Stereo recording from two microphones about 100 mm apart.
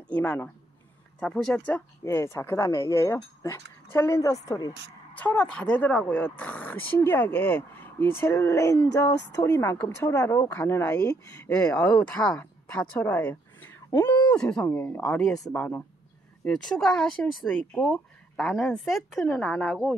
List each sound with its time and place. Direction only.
0.1 s speech: 15° left (ahead or behind)
2.0 s a woman's voice: 25° left (ahead or behind)
5.2 s speech: 15° left (ahead or behind); by 9.5 s 35° left (ahead or behind)
9.6 s speech: 20° left (ahead or behind)
13.8 s speech: 25° left (ahead or behind)
14.3 s speech: 10° left (ahead or behind)
14.7 s speech: 25° left (ahead or behind)
15.0 s speech: 5° left (ahead or behind)